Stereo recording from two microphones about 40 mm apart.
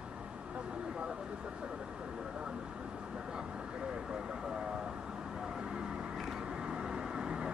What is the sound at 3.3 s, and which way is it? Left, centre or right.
Vehicle, right.